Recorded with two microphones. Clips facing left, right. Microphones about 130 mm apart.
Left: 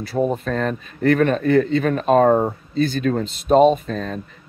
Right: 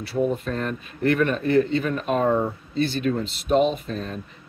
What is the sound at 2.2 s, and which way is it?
Speech, 50° left (ahead or behind).